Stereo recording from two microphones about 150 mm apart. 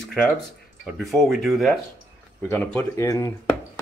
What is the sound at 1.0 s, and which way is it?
Speech, centre (ahead or behind).